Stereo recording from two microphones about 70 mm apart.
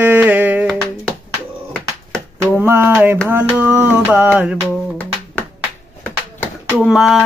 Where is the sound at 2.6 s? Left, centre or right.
Right.